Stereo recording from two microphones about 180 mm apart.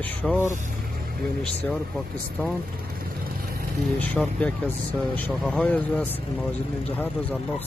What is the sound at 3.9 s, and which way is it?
Speech, 10° left (ahead or behind).